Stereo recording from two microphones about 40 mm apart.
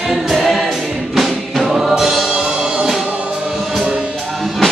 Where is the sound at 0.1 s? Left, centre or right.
Centre.